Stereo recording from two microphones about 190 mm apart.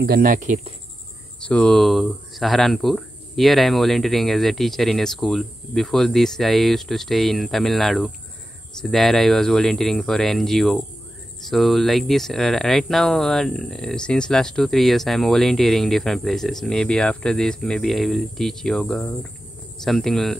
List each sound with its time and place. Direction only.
0.0 s speech: 50° right (ahead or behind)
1.4 s speech: 5° left (ahead or behind)